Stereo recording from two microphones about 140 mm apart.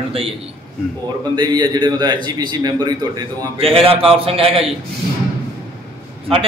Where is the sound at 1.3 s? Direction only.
35° right (ahead or behind).